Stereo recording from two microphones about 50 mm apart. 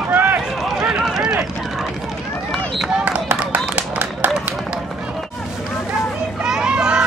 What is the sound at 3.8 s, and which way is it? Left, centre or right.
Run, right.